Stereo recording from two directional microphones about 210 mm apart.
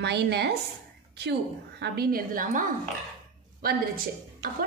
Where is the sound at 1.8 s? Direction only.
45° right (ahead or behind).